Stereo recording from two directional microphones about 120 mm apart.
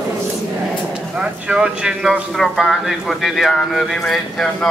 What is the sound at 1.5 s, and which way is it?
Speech, 5° right (ahead or behind).